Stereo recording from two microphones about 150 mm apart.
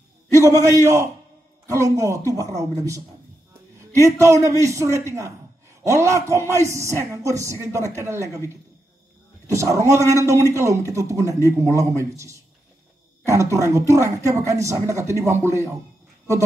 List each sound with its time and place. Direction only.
0.4 s speech: 20° right (ahead or behind)
4.2 s speech: 20° right (ahead or behind)
9.5 s speech: 20° right (ahead or behind)